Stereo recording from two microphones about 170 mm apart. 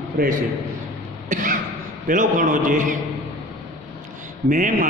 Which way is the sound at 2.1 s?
50° right (ahead or behind).